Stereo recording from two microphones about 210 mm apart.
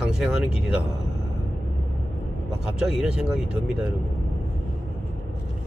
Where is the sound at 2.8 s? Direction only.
5° right (ahead or behind).